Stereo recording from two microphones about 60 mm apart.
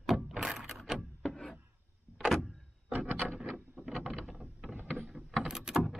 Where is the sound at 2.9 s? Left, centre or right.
Right.